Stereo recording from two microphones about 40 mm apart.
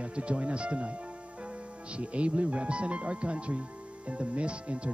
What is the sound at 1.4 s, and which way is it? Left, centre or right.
Speech, right.